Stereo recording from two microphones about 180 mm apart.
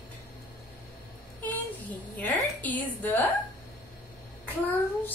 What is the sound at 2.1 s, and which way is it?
A child's voice, 10° left (ahead or behind).